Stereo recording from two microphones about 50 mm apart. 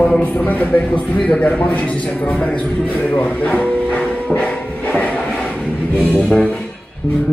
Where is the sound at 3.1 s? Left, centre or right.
Left.